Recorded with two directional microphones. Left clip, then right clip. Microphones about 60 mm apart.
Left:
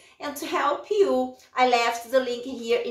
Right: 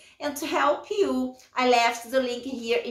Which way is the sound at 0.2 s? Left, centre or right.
Right.